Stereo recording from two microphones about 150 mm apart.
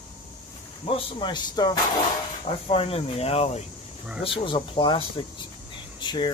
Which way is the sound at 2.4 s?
40° left (ahead or behind).